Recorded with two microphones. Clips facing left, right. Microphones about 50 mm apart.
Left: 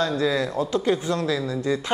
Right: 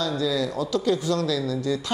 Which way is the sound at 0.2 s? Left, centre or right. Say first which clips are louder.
Left 2 dB; left.